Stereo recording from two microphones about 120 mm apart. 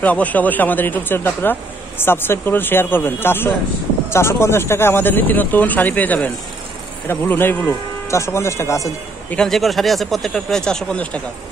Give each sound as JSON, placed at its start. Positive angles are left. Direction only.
{"t": 0.0, "sound": "a man's voice", "side_deg": 15}
{"t": 9.3, "sound": "speech", "side_deg": 5}